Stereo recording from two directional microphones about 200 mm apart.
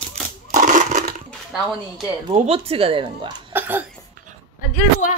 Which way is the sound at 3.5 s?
10° right (ahead or behind).